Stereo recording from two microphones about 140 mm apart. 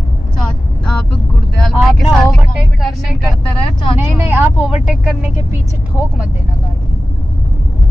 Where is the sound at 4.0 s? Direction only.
15° right (ahead or behind).